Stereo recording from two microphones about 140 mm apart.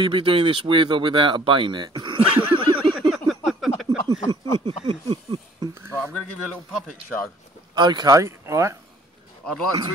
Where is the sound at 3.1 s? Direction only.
Centre (ahead or behind).